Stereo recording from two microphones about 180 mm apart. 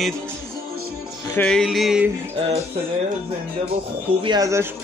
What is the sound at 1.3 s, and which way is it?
Music, 5° left (ahead or behind).